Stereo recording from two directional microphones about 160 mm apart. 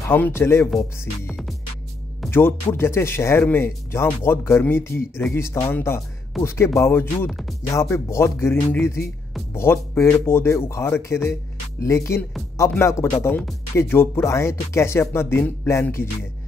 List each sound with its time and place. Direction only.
0.1 s speech: 15° left (ahead or behind)
1.2 s music: 5° right (ahead or behind)
2.3 s speech: 15° left (ahead or behind)
7.2 s speech: centre (ahead or behind)
7.7 s speech: 15° left (ahead or behind)